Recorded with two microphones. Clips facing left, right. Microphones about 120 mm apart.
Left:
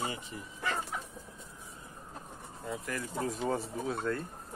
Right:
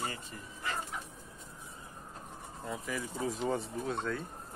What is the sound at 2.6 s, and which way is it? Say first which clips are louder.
Speech: even; centre (ahead or behind).